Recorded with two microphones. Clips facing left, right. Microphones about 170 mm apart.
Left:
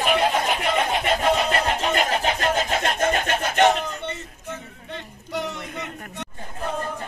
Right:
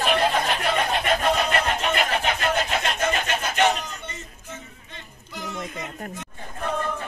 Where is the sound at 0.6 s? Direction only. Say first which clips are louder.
Left 1 dB; 20° left (ahead or behind); by 2.7 s 35° left (ahead or behind).